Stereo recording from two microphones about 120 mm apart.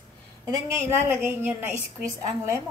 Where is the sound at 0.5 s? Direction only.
20° right (ahead or behind).